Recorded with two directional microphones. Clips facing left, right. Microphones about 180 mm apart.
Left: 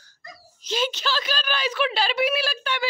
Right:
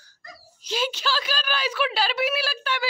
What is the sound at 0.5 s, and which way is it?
A woman's voice, 10° right (ahead or behind).